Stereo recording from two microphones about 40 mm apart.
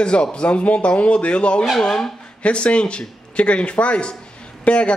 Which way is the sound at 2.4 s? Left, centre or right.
Left.